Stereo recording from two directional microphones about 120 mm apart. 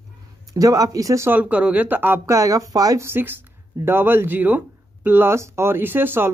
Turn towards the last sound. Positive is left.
turn(degrees=-20)  # may be behind; listen again after turning